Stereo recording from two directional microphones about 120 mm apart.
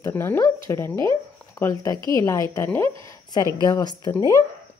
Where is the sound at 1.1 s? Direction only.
25° left (ahead or behind).